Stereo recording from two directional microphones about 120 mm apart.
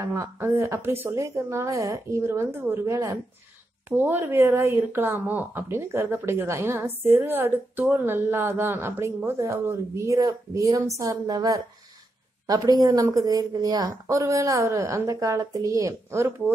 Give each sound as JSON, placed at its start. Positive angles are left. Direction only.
{"t": 0.0, "sound": "speech", "side_deg": -25}